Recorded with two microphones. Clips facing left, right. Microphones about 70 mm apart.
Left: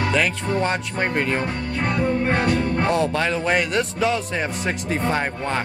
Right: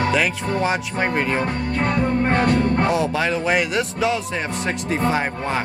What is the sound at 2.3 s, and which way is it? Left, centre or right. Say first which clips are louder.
Music: right 2 dB; right.